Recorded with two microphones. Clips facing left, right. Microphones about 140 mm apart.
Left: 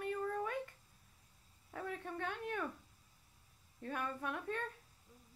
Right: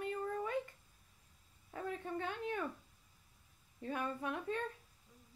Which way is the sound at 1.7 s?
5° right (ahead or behind).